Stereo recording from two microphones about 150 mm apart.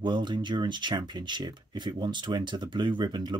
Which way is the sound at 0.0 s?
30° right (ahead or behind).